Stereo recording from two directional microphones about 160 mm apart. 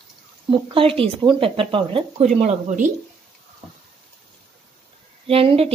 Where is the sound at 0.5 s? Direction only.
35° right (ahead or behind); by 2.9 s 50° right (ahead or behind).